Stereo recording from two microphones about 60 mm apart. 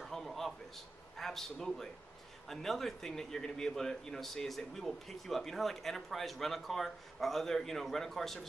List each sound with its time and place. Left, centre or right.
0.0 s a man's voice: centre